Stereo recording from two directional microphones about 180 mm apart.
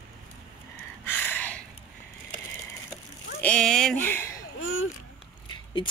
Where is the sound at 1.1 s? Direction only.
10° left (ahead or behind).